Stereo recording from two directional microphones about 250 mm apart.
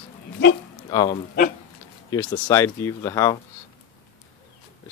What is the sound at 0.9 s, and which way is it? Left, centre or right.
Speech, centre.